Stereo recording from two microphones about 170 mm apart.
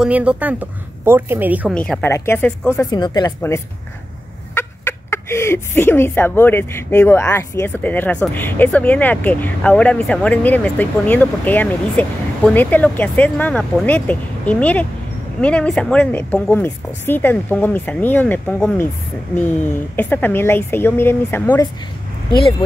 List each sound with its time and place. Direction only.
0.0 s a woman's voice: 5° right (ahead or behind)
1.7 s speech: 5° left (ahead or behind)
2.8 s a woman's voice: 25° left (ahead or behind)